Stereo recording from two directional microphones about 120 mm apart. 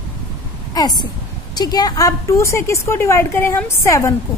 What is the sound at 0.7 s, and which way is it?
A woman's voice, 35° left (ahead or behind).